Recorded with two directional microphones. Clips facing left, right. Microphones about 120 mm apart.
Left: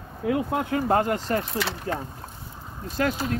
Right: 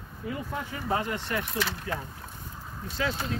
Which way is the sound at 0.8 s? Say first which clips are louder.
Left 7 dB; 50° left (ahead or behind).